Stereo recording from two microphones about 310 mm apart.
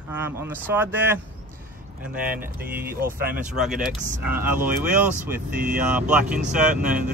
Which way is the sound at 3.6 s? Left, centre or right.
Centre.